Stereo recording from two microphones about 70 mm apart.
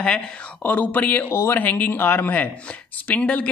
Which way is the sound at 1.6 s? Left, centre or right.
Left.